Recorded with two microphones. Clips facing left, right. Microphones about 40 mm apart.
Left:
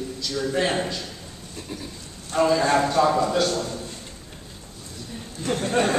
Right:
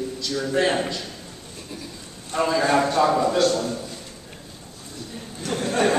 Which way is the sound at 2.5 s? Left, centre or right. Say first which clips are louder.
Right 3 dB; centre.